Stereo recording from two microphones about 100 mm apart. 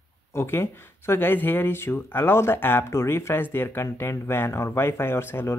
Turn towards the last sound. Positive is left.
turn(degrees=25)  # may be behind; listen again after turning